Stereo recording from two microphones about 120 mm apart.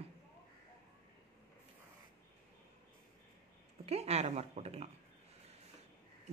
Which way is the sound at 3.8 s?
60° right (ahead or behind).